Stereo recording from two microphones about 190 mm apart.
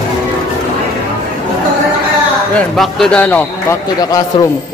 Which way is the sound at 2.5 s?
5° left (ahead or behind).